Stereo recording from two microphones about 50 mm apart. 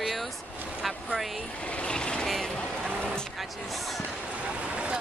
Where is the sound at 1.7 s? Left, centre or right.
Left.